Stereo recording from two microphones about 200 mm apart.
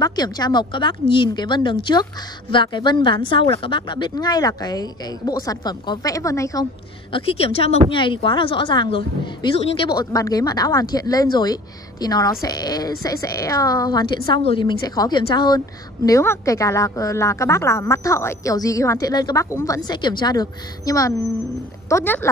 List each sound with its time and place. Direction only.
0.0 s a woman's voice: 20° left (ahead or behind)